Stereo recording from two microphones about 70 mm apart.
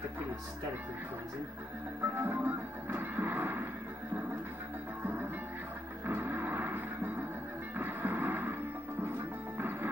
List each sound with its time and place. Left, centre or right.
2.1 s music: right
5.0 s music: right
9.6 s music: right